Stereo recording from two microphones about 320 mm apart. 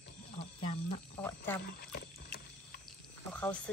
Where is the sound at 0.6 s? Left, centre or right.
Centre.